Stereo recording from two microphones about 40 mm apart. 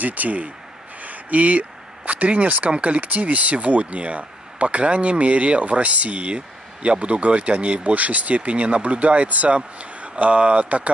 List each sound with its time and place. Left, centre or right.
0.0 s speech: right